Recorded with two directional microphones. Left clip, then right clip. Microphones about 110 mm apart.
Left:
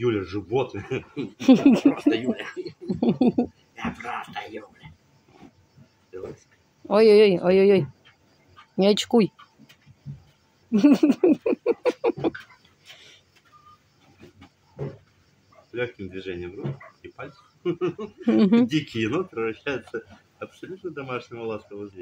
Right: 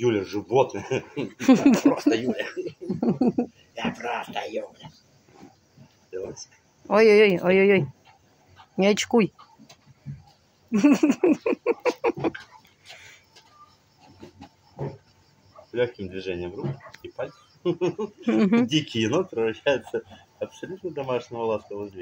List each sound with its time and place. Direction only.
0.0 s speech: 30° left (ahead or behind)
6.9 s speech: 20° left (ahead or behind)
10.7 s speech: 30° left (ahead or behind)
12.0 s a sound: 30° left (ahead or behind)
15.8 s speech: 40° left (ahead or behind)
20.9 s speech: 50° left (ahead or behind)